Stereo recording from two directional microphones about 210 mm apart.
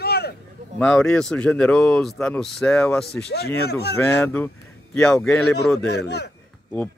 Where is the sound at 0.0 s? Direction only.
50° left (ahead or behind).